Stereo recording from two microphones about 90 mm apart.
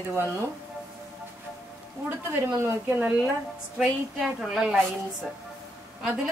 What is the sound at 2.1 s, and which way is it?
Speech, 25° right (ahead or behind).